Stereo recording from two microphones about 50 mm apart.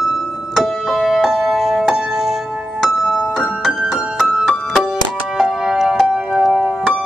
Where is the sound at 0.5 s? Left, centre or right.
Centre.